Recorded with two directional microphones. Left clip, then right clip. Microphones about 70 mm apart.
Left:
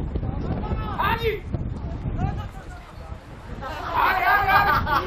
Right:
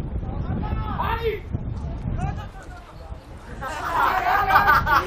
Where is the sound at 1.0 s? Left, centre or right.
Left.